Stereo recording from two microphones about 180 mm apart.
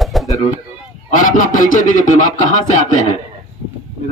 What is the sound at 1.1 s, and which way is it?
Speech, 45° left (ahead or behind).